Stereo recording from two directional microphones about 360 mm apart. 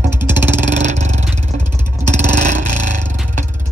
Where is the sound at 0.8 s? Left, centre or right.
Centre.